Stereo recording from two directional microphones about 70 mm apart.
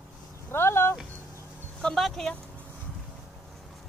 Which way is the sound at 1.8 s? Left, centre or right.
Centre.